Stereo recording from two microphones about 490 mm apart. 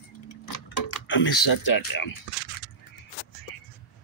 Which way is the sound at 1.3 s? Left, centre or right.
Left.